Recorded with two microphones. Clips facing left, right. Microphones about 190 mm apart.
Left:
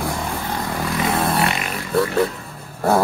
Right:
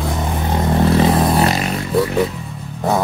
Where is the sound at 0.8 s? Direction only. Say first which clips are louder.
Right 6 dB; 35° right (ahead or behind).